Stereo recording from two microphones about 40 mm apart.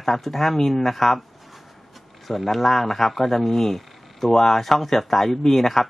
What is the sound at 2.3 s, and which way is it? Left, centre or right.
Speech, centre.